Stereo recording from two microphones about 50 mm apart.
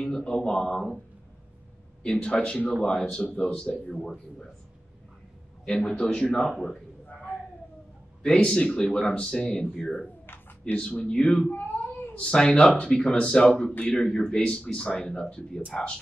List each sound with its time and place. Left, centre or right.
0.0 s speech: centre
2.0 s speech: centre
3.9 s speech: centre
5.7 s speech: centre
8.2 s speech: centre
11.5 s baby cry: left
12.2 s speech: centre
14.4 s speech: left